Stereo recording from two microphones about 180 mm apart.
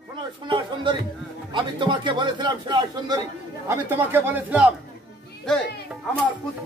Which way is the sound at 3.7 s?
10° right (ahead or behind).